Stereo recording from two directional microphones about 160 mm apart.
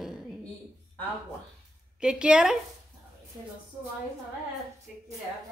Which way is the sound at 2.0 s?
5° right (ahead or behind).